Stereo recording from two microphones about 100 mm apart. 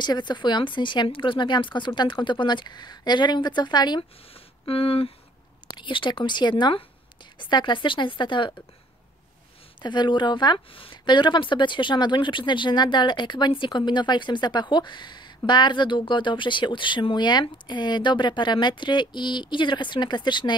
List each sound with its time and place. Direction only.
0.0 s speech: 45° left (ahead or behind)
4.3 s speech: 70° left (ahead or behind)
5.7 s speech: 55° left (ahead or behind)
7.3 s speech: 50° left (ahead or behind)
9.8 s speech: 50° left (ahead or behind)